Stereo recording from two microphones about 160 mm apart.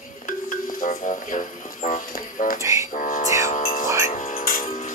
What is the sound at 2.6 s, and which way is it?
Music, 20° right (ahead or behind).